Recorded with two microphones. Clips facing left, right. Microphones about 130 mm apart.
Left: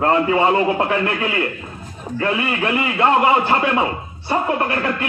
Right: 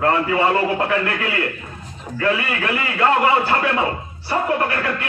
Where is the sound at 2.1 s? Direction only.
25° left (ahead or behind).